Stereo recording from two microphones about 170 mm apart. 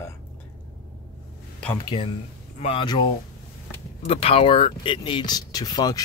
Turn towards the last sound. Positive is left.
turn(degrees=25)  # may be behind; listen again after turning